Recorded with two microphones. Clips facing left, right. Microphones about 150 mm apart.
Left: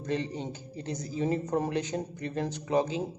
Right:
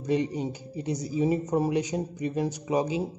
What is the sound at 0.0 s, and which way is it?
Speech, 10° right (ahead or behind).